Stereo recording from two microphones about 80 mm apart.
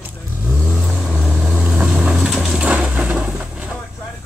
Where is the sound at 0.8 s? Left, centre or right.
Centre.